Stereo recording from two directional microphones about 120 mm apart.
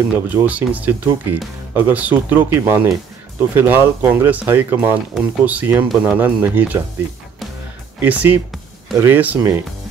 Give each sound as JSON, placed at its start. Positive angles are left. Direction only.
{"t": 0.1, "sound": "speech", "side_deg": -15}
{"t": 8.0, "sound": "speech", "side_deg": -15}